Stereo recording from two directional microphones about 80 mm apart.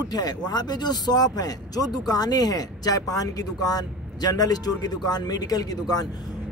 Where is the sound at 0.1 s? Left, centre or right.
Left.